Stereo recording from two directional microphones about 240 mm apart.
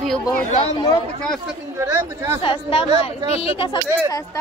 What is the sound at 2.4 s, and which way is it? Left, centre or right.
Speech, left.